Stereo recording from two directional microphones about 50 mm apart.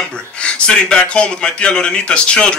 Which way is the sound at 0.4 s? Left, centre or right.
Centre.